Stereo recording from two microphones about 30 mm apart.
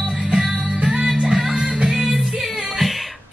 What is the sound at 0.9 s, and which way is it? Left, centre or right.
Music, centre.